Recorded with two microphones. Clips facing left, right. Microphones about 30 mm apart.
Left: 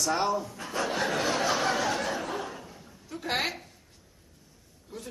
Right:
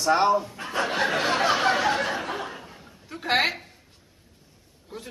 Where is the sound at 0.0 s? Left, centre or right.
Right.